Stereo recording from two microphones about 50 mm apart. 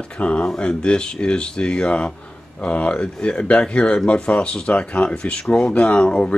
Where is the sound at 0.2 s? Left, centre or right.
Left.